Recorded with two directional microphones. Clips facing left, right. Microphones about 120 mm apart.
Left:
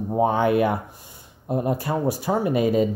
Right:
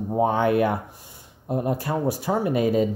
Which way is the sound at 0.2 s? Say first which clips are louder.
Left 1 dB; 15° left (ahead or behind).